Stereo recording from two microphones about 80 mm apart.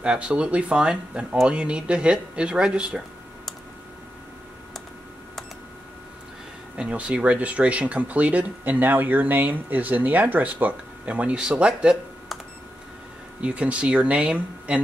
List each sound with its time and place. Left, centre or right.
0.0 s speech: centre
6.8 s speech: centre
13.4 s speech: centre